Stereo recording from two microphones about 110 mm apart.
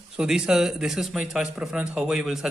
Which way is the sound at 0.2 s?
5° right (ahead or behind).